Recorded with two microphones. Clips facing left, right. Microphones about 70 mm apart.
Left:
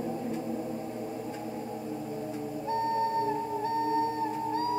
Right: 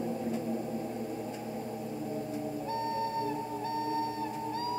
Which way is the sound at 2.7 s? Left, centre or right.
Left.